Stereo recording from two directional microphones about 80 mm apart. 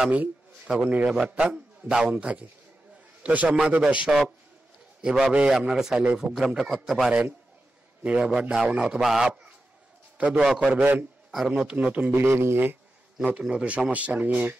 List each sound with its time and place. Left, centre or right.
0.7 s a man's voice: centre
8.0 s a man's voice: centre
8.3 s speech: centre
10.1 s a man's voice: centre
11.3 s speech: centre
11.7 s speech: centre
12.2 s a man's voice: right
13.2 s speech: centre